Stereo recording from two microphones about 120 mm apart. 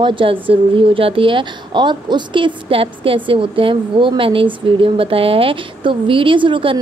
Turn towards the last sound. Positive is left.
turn(degrees=-45)  # may be behind; listen again after turning